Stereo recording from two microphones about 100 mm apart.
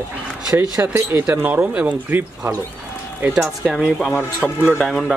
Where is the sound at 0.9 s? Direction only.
20° right (ahead or behind).